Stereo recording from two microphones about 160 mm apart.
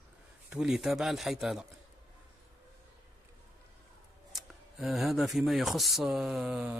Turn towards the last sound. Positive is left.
turn(degrees=-5)  # may be behind; listen again after turning